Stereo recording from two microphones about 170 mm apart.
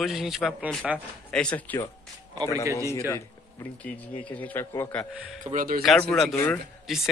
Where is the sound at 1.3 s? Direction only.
5° left (ahead or behind).